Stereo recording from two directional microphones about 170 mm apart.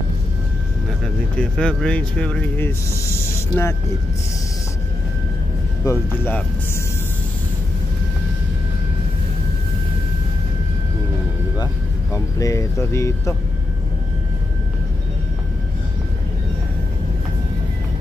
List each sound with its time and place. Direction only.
1.0 s speech: 5° left (ahead or behind)
5.9 s speech: 15° left (ahead or behind)
11.5 s speech: 20° left (ahead or behind)